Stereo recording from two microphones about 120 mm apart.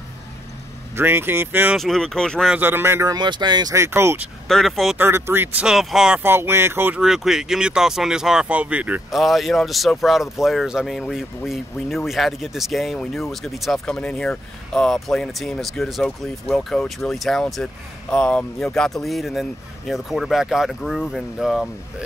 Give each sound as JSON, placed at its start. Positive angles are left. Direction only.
{"t": 0.9, "sound": "speech", "side_deg": -20}
{"t": 1.8, "sound": "speech", "side_deg": 5}
{"t": 2.5, "sound": "speech", "side_deg": -15}
{"t": 3.2, "sound": "speech", "side_deg": -35}
{"t": 3.7, "sound": "speech", "side_deg": -20}
{"t": 4.5, "sound": "speech", "side_deg": 5}
{"t": 4.9, "sound": "speech", "side_deg": -20}
{"t": 6.2, "sound": "speech", "side_deg": -20}
{"t": 7.0, "sound": "speech", "side_deg": -5}
{"t": 9.1, "sound": "speech", "side_deg": 0}